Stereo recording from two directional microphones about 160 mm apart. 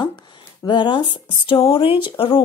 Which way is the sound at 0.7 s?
30° left (ahead or behind).